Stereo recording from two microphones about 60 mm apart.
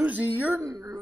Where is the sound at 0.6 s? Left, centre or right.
Right.